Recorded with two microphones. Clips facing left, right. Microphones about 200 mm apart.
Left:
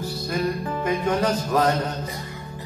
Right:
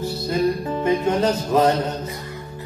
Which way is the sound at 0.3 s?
25° right (ahead or behind).